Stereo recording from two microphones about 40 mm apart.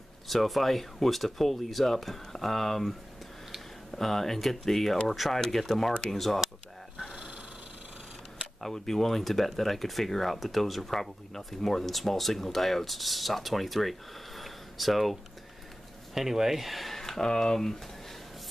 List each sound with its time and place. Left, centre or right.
0.3 s speech: centre
3.9 s speech: centre
8.7 s speech: centre
16.2 s speech: centre
17.2 s speech: centre